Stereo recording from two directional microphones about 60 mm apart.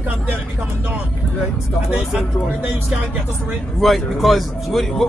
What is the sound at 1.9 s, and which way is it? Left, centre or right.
Speech, centre.